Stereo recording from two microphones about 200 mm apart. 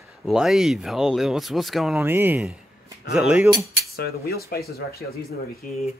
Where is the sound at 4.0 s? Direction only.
50° left (ahead or behind).